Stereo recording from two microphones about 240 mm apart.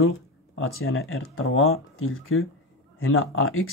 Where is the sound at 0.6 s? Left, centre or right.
Left.